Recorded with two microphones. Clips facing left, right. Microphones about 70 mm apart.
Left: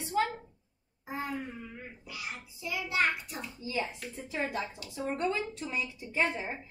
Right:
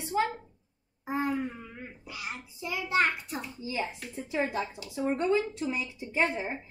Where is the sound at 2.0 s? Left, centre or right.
Right.